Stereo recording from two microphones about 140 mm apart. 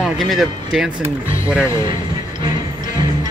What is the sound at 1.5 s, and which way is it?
Speech, 15° left (ahead or behind).